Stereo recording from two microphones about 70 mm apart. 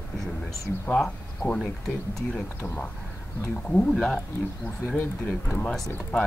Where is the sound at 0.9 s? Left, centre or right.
Centre.